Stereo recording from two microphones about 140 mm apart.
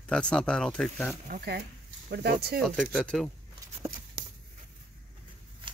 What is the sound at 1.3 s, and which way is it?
Speech, 90° right.